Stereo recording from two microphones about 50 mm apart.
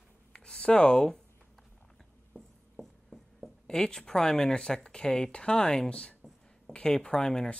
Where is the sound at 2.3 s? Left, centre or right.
Centre.